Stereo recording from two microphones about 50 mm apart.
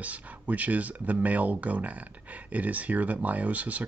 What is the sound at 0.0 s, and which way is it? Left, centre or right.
Speech, right.